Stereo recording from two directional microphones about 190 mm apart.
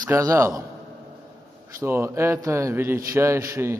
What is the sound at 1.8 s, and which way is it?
A man's voice, 15° right (ahead or behind).